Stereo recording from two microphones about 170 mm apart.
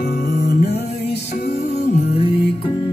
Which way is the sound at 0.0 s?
70° left (ahead or behind).